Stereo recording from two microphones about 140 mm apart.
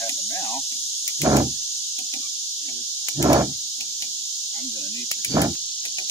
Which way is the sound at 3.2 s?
25° right (ahead or behind).